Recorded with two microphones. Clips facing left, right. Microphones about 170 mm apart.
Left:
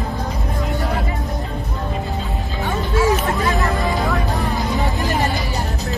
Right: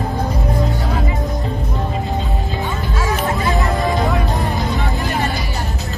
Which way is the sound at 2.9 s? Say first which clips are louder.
Left 3 dB; centre (ahead or behind).